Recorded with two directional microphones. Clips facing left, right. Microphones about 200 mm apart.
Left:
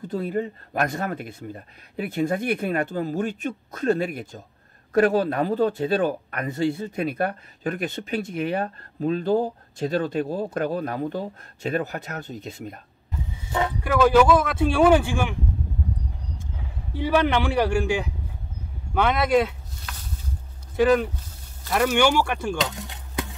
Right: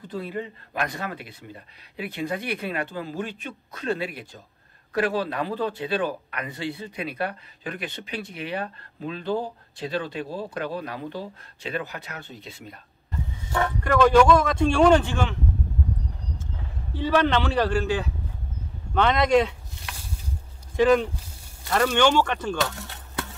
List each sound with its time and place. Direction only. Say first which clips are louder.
0.1 s speech: left 5 dB; 45° left (ahead or behind)
13.5 s speech: even; 10° left (ahead or behind)
16.3 s a man's voice: even; 15° left (ahead or behind)
20.7 s speech: even; 5° left (ahead or behind)